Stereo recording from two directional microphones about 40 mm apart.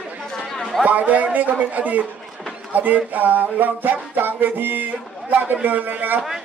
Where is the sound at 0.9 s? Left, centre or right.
Right.